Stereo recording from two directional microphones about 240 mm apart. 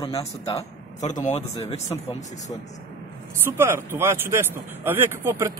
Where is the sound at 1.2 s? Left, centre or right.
Left.